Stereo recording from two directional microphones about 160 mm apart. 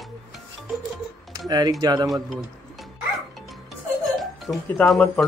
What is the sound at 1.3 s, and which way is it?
Speech, 25° right (ahead or behind).